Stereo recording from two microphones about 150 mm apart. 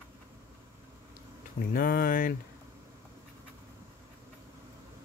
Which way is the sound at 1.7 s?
80° left.